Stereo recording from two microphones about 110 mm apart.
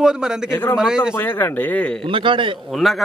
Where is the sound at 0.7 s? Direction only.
5° right (ahead or behind).